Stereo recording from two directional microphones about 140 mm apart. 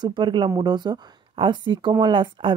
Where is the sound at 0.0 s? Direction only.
35° right (ahead or behind).